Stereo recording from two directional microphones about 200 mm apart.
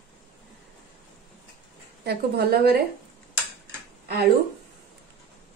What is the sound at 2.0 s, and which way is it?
Speech, 50° right (ahead or behind).